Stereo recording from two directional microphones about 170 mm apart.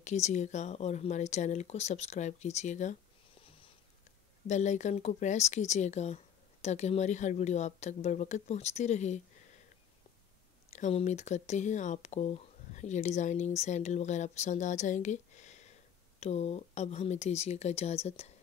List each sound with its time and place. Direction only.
0.0 s speech: 40° left (ahead or behind)
4.5 s speech: 45° left (ahead or behind)
10.7 s speech: 40° left (ahead or behind)